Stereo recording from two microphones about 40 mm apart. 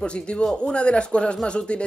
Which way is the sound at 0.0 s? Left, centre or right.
Left.